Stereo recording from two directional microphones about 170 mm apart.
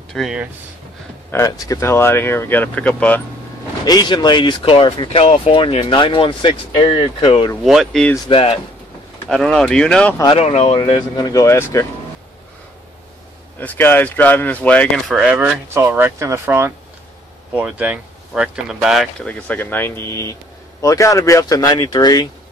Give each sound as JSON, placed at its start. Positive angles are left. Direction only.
{"t": 0.1, "sound": "speech", "side_deg": 0}
{"t": 1.3, "sound": "speech", "side_deg": 20}
{"t": 3.8, "sound": "speech", "side_deg": 25}
{"t": 7.6, "sound": "speech", "side_deg": 0}
{"t": 8.3, "sound": "speech", "side_deg": 35}
{"t": 9.3, "sound": "speech", "side_deg": 5}
{"t": 10.3, "sound": "speech", "side_deg": 40}
{"t": 10.9, "sound": "speech", "side_deg": 25}
{"t": 13.6, "sound": "speech", "side_deg": 10}
{"t": 15.1, "sound": "speech", "side_deg": -5}
{"t": 19.2, "sound": "speech", "side_deg": 10}